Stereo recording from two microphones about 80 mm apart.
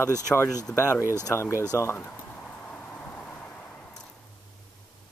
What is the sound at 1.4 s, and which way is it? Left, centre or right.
Speech, left.